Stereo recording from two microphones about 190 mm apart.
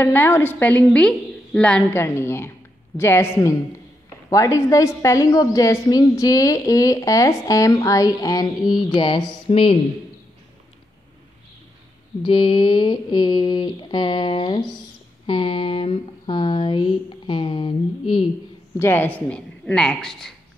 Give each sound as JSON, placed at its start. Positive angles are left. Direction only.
{"t": 0.0, "sound": "a woman's voice", "side_deg": 10}
{"t": 8.9, "sound": "mantra", "side_deg": 25}
{"t": 12.2, "sound": "mantra", "side_deg": 25}
{"t": 15.2, "sound": "speech", "side_deg": 25}
{"t": 18.8, "sound": "a woman's voice", "side_deg": 10}